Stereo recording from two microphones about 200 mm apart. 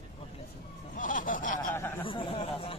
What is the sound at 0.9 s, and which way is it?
Snicker, 40° left (ahead or behind).